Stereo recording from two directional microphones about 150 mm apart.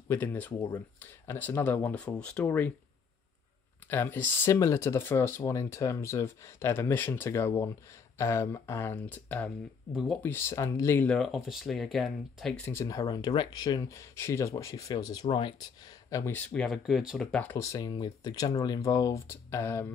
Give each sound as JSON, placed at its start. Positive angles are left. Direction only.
{"t": 0.1, "sound": "speech", "side_deg": 10}
{"t": 3.9, "sound": "speech", "side_deg": 15}
{"t": 11.1, "sound": "speech", "side_deg": 0}
{"t": 12.6, "sound": "speech", "side_deg": 20}
{"t": 17.6, "sound": "speech", "side_deg": 25}